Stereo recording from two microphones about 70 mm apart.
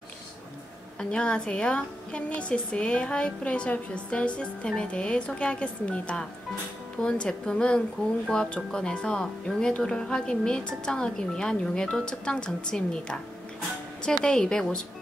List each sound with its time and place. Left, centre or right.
0.9 s a woman's voice: centre